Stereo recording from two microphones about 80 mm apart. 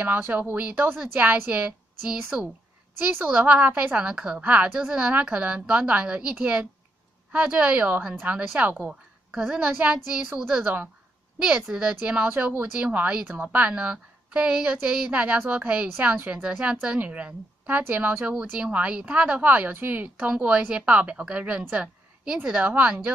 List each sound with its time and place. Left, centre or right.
0.0 s speech: right
3.3 s speech: centre